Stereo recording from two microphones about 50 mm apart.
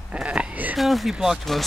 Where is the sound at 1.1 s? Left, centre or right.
Centre.